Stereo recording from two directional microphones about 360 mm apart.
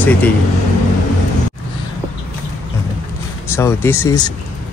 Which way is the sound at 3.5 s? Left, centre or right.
Centre.